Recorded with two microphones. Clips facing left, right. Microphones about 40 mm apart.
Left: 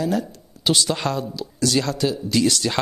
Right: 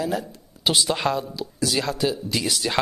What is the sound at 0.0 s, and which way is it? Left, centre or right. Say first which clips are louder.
Speech: left 3 dB; centre.